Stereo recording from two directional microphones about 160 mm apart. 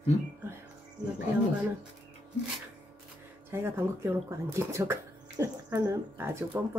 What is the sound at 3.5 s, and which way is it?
Speech, 15° right (ahead or behind).